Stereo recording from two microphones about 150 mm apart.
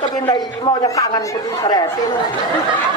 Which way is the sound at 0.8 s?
20° left (ahead or behind).